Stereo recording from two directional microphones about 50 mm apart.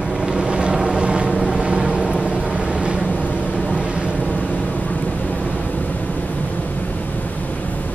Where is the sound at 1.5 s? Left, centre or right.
Centre.